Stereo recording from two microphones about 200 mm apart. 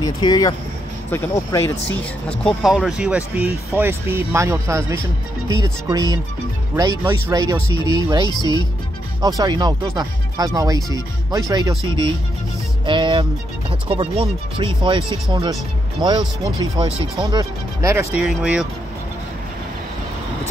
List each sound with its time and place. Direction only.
0.0 s speech: 20° left (ahead or behind); by 7.6 s 15° right (ahead or behind)
7.6 s speech: 25° left (ahead or behind)
9.4 s speech: 20° right (ahead or behind)
12.8 s speech: 25° right (ahead or behind)
18.1 s speech: 5° right (ahead or behind)